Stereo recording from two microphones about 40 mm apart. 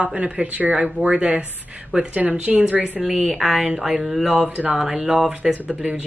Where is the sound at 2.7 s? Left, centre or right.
Right.